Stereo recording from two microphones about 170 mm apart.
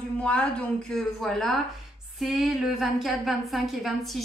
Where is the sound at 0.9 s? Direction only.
Centre (ahead or behind).